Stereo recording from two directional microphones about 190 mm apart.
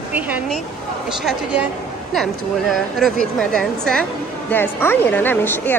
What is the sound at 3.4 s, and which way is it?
A woman's voice, 5° left (ahead or behind).